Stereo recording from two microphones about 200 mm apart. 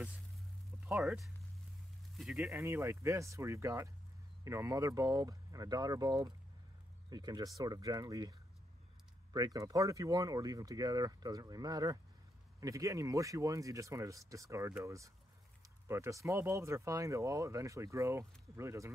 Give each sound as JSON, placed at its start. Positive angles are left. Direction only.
{"t": 0.8, "sound": "speech", "side_deg": 0}